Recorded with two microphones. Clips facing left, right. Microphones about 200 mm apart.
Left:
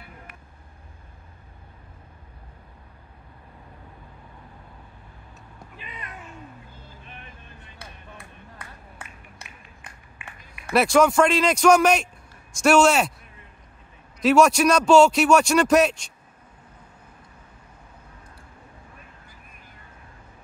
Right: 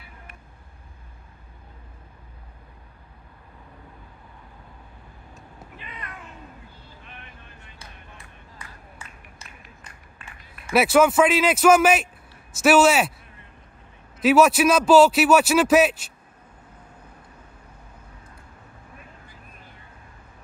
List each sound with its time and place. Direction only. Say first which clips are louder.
5.8 s cat: even; 20° left (ahead or behind)
7.8 s a sound: left 4 dB; 60° left (ahead or behind)
10.7 s speech: right 1 dB; 5° right (ahead or behind)
14.2 s speech: even; 5° right (ahead or behind)